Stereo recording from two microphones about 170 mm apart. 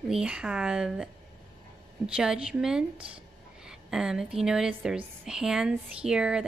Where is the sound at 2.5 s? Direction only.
5° right (ahead or behind).